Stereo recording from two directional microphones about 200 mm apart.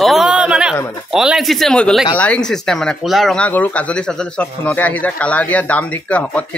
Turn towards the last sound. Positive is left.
turn(degrees=5)  # may be behind; listen again after turning